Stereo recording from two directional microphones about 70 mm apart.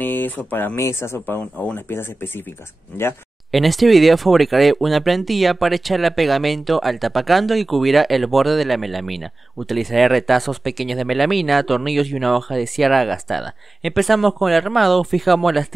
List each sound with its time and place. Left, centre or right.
0.0 s a sound: left
0.5 s speech: left
0.7 s speech: left
3.5 s speech: centre